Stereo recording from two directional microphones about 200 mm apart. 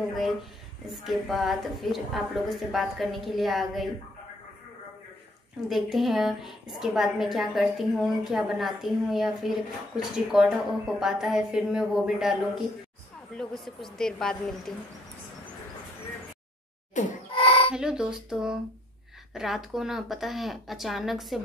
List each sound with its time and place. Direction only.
0.1 s a woman's voice: centre (ahead or behind)
5.7 s a woman's voice: centre (ahead or behind)
17.0 s speech: 40° left (ahead or behind)
17.4 s chicken: 25° left (ahead or behind)
17.7 s a woman's voice: 5° right (ahead or behind)